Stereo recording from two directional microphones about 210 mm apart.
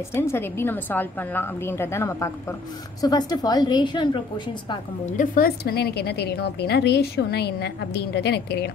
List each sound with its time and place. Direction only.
0.1 s a woman's voice: 10° left (ahead or behind)
4.6 s a woman's voice: 35° left (ahead or behind); by 8.6 s 50° left (ahead or behind)